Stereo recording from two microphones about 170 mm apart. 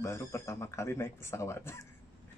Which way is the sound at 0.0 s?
15° left (ahead or behind).